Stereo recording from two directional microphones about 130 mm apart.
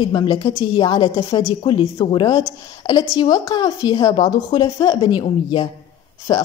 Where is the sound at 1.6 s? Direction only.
40° left (ahead or behind).